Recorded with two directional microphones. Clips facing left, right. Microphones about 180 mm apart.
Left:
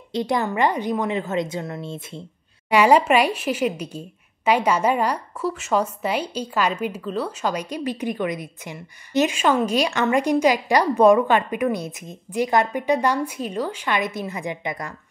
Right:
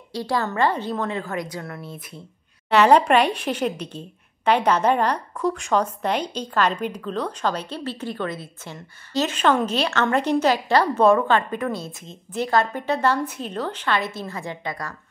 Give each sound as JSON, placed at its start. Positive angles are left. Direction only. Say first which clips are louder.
{"t": 0.1, "sound": "a woman's voice", "louder": "left 2 dB", "side_deg": 20}
{"t": 2.7, "sound": "a woman's voice", "louder": "even", "side_deg": 10}